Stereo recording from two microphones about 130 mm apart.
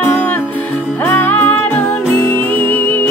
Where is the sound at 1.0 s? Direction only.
15° left (ahead or behind).